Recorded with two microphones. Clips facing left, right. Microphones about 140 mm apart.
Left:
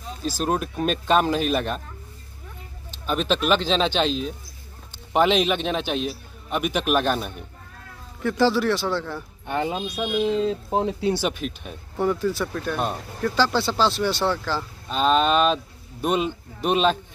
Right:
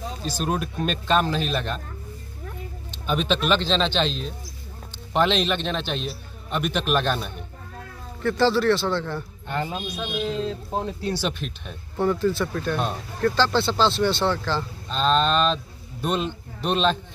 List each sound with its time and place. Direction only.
0.5 s speech: centre (ahead or behind)
3.1 s a man's voice: centre (ahead or behind); by 11.1 s 20° left (ahead or behind)
11.2 s speech: 5° left (ahead or behind)